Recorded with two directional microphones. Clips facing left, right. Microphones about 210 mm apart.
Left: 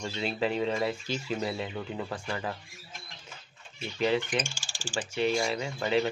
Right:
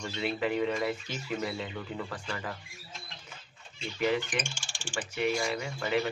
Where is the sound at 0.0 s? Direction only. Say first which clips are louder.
Left 1 dB; 30° left (ahead or behind).